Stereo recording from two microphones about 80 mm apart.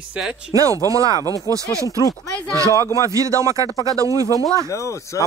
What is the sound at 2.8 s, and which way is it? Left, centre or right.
Speech, left.